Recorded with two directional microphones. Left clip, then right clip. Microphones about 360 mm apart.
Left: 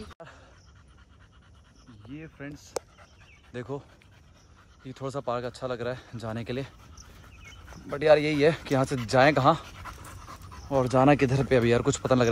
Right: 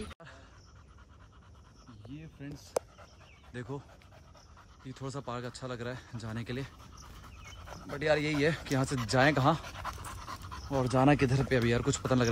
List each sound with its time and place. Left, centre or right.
2.1 s speech: right
2.5 s speech: centre
4.8 s speech: centre